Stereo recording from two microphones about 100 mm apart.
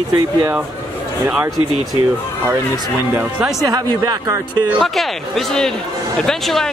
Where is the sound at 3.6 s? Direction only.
40° right (ahead or behind).